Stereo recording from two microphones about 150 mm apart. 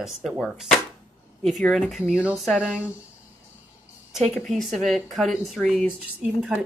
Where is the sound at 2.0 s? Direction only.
5° right (ahead or behind).